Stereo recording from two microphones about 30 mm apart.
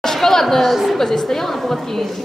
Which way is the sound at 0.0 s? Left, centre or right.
Centre.